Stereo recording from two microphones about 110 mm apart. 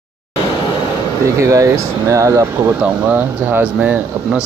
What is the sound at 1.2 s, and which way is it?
Speech, 30° right (ahead or behind).